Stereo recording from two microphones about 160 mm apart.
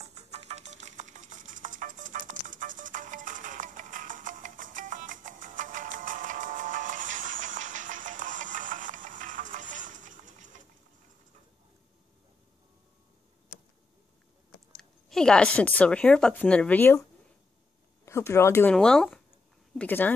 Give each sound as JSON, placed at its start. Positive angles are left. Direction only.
{"t": 0.1, "sound": "music", "side_deg": -45}
{"t": 14.8, "sound": "speech", "side_deg": 5}
{"t": 18.0, "sound": "speech", "side_deg": 15}